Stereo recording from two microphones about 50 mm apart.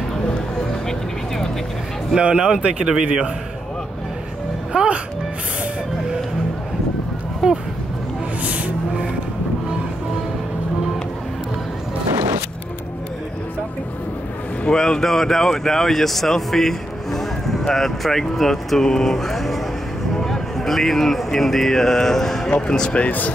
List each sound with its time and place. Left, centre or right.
0.8 s music: centre
2.1 s speech: centre
4.7 s music: centre
7.4 s speech: centre
8.4 s music: right
14.7 s speech: centre
22.9 s speech: left